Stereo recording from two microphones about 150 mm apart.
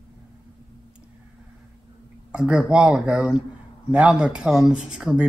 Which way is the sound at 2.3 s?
5° right (ahead or behind).